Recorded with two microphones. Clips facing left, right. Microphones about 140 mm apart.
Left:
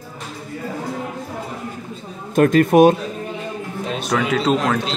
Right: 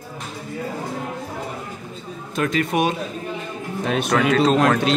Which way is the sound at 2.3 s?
50° left (ahead or behind).